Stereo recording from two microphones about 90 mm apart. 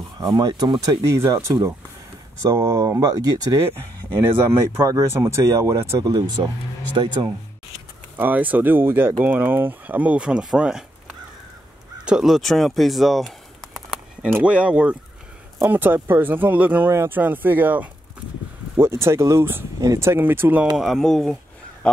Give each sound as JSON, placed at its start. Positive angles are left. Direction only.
{"t": 0.3, "sound": "speech", "side_deg": -50}
{"t": 1.0, "sound": "speech", "side_deg": -35}
{"t": 4.2, "sound": "speech", "side_deg": -25}
{"t": 7.0, "sound": "speech", "side_deg": -65}
{"t": 8.2, "sound": "speech", "side_deg": -20}
{"t": 12.0, "sound": "speech", "side_deg": -5}
{"t": 14.4, "sound": "speech", "side_deg": -10}
{"t": 20.7, "sound": "speech", "side_deg": 0}